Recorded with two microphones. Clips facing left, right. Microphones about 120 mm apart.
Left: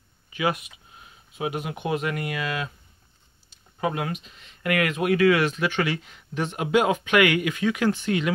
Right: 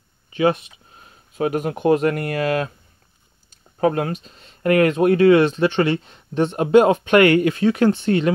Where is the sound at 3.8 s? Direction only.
40° right (ahead or behind).